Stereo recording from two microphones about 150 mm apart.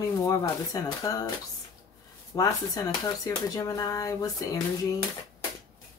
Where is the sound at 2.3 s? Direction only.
25° left (ahead or behind).